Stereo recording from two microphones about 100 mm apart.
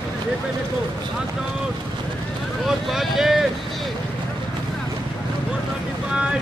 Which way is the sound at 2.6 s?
5° right (ahead or behind).